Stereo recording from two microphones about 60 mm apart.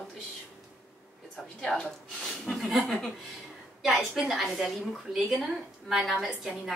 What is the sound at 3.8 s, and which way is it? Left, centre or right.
A woman's voice, centre.